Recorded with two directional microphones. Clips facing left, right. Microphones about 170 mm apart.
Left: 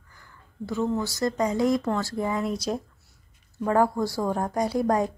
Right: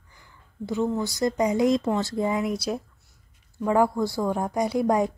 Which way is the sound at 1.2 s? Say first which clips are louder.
Right 2 dB; 15° right (ahead or behind).